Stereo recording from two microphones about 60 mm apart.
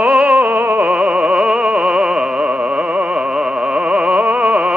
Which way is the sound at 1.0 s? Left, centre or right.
Centre.